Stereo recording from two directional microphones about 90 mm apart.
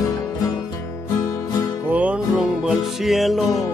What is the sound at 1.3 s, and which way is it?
Music, 35° left (ahead or behind).